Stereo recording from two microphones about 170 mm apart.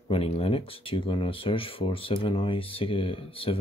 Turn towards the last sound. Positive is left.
turn(degrees=30)  # may be behind; listen again after turning